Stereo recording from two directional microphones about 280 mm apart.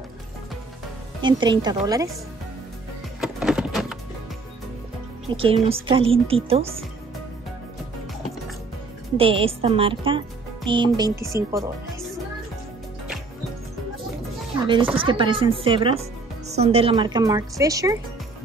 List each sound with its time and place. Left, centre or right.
1.2 s speech: centre
3.2 s music: centre
5.3 s a woman's voice: centre
9.1 s speech: centre
14.5 s chopping: centre
15.0 s speech: centre